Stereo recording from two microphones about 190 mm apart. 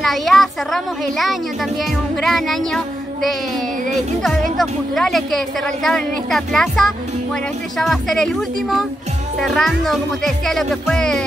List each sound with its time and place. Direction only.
0.0 s speech: centre (ahead or behind)